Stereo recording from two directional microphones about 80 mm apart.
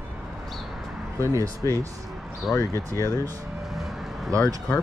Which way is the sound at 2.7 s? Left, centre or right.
Right.